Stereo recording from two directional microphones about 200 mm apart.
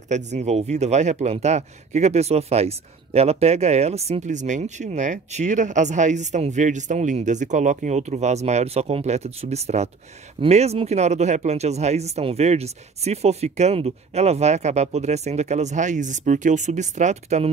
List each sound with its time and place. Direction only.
0.1 s speech: 35° right (ahead or behind)